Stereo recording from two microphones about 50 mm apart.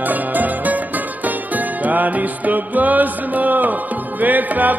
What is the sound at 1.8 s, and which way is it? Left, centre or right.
Music, right.